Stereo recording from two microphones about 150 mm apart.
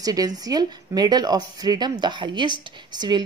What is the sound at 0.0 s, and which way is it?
A woman's voice, 25° right (ahead or behind).